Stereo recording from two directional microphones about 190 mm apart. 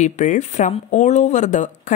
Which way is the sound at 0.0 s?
40° left (ahead or behind).